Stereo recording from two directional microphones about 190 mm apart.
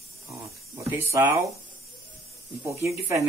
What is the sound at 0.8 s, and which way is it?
Speech, 15° right (ahead or behind).